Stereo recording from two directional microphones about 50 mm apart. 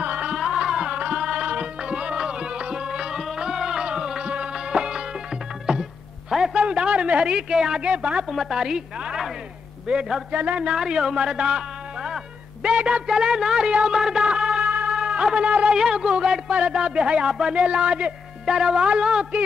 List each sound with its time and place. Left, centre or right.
0.0 s music: right; by 5.8 s centre
6.5 s a sound: centre
8.3 s a woman's voice: centre
10.3 s a man's voice: right
10.6 s a man's voice: centre
13.9 s music: centre
14.9 s a sound: centre
15.7 s a man's voice: centre
18.4 s speech: centre